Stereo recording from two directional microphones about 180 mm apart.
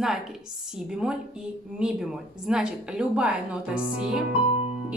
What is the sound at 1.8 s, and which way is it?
A woman's voice, 5° right (ahead or behind).